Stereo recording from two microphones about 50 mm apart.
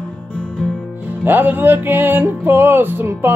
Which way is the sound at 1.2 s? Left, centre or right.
Right.